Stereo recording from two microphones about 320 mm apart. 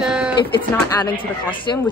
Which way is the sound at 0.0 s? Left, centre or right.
Centre.